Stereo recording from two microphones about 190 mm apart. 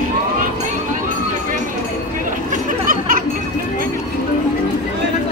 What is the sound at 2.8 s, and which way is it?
Music, 45° right (ahead or behind).